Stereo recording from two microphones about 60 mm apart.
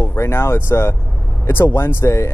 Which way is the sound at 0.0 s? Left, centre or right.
Left.